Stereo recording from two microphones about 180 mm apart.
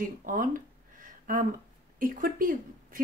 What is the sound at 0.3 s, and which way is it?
Speech, 50° right (ahead or behind).